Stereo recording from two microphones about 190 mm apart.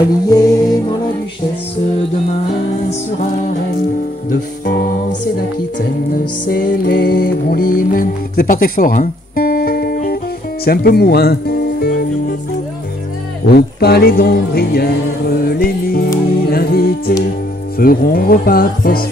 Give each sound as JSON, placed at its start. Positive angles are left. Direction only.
{"t": 0.3, "sound": "music", "side_deg": 20}
{"t": 4.3, "sound": "music", "side_deg": 60}
{"t": 5.8, "sound": "music", "side_deg": 50}
{"t": 13.5, "sound": "music", "side_deg": 55}
{"t": 17.7, "sound": "speech", "side_deg": 50}